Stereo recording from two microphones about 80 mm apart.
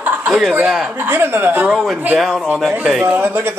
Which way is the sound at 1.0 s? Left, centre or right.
Right.